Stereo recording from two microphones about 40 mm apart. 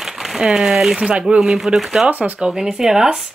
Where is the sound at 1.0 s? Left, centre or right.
Right.